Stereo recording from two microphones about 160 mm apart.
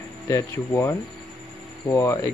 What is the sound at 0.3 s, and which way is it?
A man's voice, 20° left (ahead or behind).